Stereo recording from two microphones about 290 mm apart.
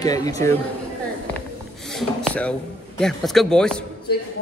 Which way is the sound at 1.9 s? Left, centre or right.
Centre.